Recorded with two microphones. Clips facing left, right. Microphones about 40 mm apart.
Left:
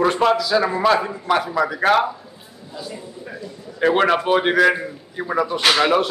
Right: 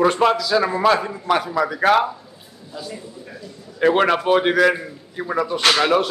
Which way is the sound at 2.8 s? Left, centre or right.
Centre.